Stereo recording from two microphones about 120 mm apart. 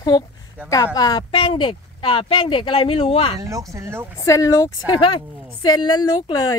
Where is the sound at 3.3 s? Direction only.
30° right (ahead or behind).